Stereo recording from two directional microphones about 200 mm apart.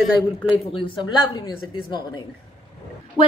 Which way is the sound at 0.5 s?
25° left (ahead or behind).